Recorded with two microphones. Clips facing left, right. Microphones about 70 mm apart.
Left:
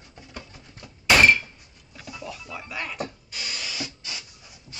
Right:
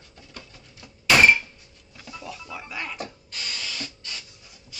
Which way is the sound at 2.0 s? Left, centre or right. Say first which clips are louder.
Even; centre.